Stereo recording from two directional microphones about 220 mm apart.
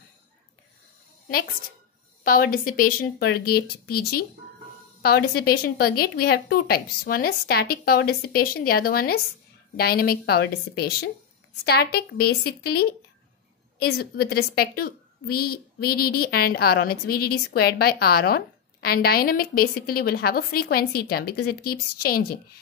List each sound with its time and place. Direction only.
2.2 s a woman's voice: 40° left (ahead or behind)
5.0 s a woman's voice: 45° left (ahead or behind)